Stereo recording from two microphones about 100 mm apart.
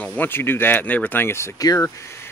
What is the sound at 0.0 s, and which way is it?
Speech, 15° left (ahead or behind).